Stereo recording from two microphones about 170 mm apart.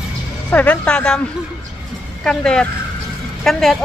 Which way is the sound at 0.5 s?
10° left (ahead or behind).